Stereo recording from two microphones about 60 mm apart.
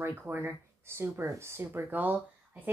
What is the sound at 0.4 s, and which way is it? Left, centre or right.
Speech, right.